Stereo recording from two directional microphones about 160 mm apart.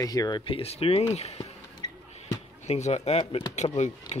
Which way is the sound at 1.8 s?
25° left (ahead or behind).